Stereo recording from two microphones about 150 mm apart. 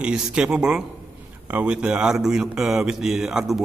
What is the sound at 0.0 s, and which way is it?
A man's voice, 5° right (ahead or behind).